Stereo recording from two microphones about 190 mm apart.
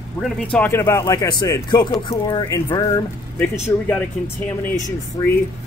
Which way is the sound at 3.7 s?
10° left (ahead or behind).